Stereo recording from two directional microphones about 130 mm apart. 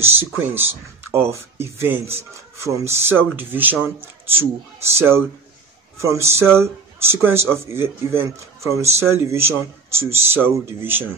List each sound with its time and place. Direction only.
0.0 s speech: 20° right (ahead or behind)